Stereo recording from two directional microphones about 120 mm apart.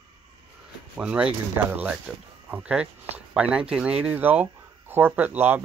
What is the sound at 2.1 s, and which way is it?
Speech, centre (ahead or behind).